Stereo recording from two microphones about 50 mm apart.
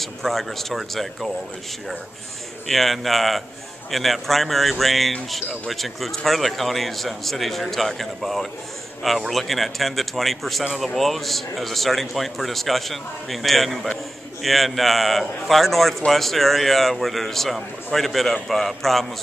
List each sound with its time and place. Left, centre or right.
0.0 s speech: centre
2.7 s speech: centre